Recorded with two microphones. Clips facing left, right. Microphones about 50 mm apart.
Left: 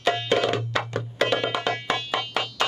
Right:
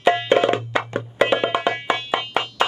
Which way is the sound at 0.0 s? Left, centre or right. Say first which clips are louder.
Right 6 dB; right.